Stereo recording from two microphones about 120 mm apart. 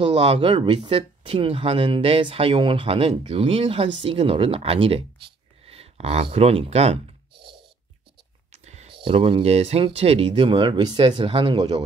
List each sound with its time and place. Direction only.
0.1 s speech: 50° right (ahead or behind)
5.7 s a sound: 60° right (ahead or behind)
8.5 s whispering: 65° right (ahead or behind)
8.9 s speech: 50° right (ahead or behind)
11.0 s speech: 50° right (ahead or behind)
11.5 s speech: 35° right (ahead or behind)